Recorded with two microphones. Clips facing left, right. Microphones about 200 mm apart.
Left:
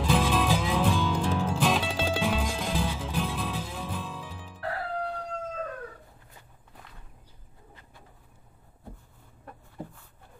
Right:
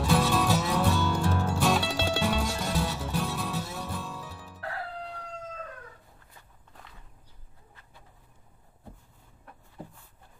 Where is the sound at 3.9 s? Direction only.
10° left (ahead or behind).